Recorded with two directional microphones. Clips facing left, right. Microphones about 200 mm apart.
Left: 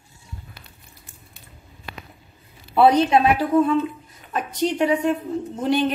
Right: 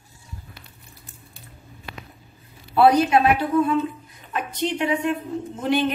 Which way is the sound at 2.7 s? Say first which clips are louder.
Left 1 dB; 20° left (ahead or behind).